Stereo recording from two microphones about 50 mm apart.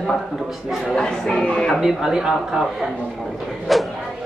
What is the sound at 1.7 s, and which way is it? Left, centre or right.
Speech, centre.